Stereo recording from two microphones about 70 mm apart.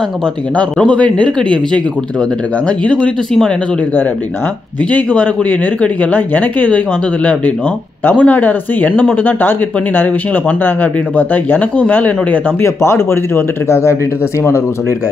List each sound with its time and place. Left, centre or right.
0.6 s a man's voice: centre
2.8 s a man's voice: centre
4.9 s speech: left
8.0 s speech: left
12.6 s speech: left